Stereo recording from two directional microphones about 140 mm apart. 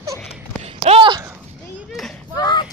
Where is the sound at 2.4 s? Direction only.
30° left (ahead or behind).